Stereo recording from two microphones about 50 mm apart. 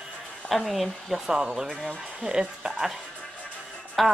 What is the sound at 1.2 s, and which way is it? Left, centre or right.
Speech, centre.